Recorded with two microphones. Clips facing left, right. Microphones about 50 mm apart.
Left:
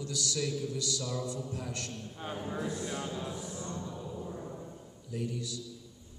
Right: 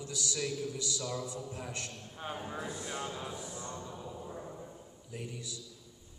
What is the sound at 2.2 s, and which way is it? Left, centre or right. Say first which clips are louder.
Speech: left 2 dB; centre.